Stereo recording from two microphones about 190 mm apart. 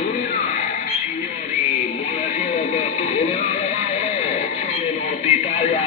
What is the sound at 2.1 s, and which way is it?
Music, 35° left (ahead or behind).